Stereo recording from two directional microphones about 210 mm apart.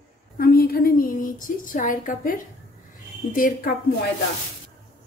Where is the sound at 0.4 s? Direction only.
45° left (ahead or behind).